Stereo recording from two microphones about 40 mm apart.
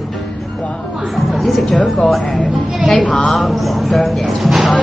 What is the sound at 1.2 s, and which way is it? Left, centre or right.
Speech, centre.